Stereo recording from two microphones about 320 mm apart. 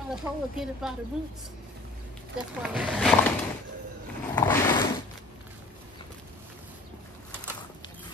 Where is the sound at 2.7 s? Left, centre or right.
Centre.